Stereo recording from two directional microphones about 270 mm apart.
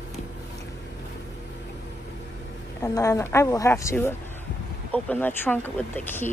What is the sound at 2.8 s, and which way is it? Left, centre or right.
Speech, centre.